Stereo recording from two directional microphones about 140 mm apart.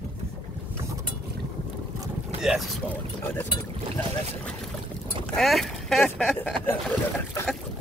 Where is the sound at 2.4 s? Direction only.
Centre (ahead or behind).